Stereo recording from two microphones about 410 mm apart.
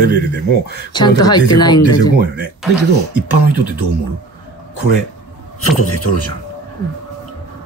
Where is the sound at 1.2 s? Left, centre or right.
Centre.